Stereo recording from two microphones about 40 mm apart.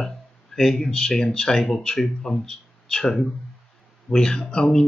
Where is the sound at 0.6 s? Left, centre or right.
Centre.